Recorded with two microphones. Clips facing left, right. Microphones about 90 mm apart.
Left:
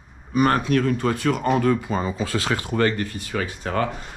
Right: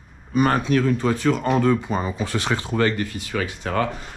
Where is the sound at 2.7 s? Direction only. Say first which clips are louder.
Even; 40° left (ahead or behind).